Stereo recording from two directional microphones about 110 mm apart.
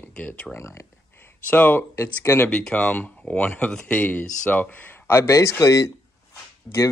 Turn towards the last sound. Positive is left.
turn(degrees=10)  # may be behind; listen again after turning